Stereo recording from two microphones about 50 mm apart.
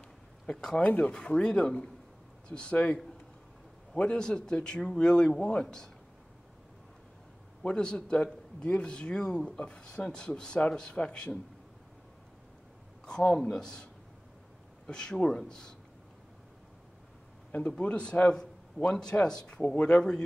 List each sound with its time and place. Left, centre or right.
0.5 s a man's voice: centre
0.8 s speech: left
1.1 s speech: centre
4.0 s a man's voice: centre
7.6 s a man's voice: centre
13.0 s a man's voice: centre
14.9 s a man's voice: centre
17.5 s a man's voice: left